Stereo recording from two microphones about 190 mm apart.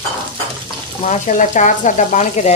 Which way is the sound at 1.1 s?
40° left (ahead or behind).